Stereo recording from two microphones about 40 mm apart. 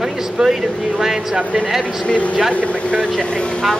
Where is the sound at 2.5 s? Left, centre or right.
Left.